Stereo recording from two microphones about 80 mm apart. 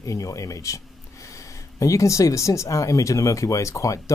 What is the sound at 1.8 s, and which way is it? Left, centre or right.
Speech, left.